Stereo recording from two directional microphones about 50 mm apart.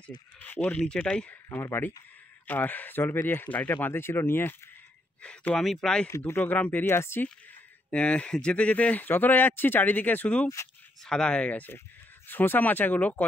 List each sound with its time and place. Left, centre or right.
0.0 s speech: left
1.5 s speech: left
2.4 s speech: left
3.4 s speech: left
5.6 s speech: centre
6.0 s speech: left
6.4 s speech: left
6.9 s speech: left
7.9 s speech: left
11.1 s speech: centre
12.3 s speech: left